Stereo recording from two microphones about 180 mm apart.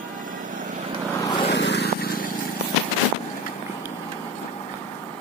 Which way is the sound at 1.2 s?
30° left (ahead or behind).